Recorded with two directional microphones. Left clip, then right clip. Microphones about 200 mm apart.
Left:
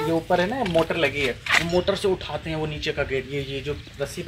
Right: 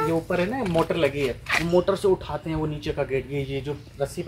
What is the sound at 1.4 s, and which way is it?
Speech, 5° right (ahead or behind).